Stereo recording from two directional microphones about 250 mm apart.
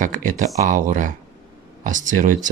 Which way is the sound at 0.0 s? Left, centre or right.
Right.